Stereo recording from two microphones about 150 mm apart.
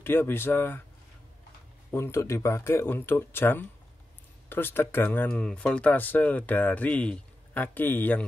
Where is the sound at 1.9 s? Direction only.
15° left (ahead or behind).